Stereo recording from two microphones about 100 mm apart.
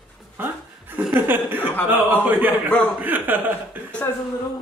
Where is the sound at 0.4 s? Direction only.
20° right (ahead or behind).